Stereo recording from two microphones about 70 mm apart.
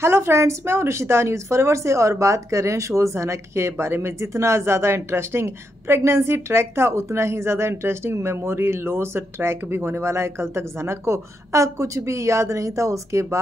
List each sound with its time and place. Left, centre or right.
0.0 s speech: right